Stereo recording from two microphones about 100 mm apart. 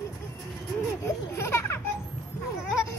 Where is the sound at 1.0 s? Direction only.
25° left (ahead or behind).